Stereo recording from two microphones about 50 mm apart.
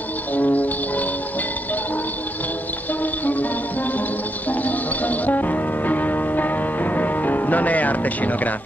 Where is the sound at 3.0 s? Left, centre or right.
Left.